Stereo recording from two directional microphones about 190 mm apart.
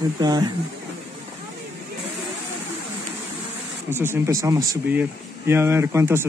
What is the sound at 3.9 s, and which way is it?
Speech, 10° right (ahead or behind).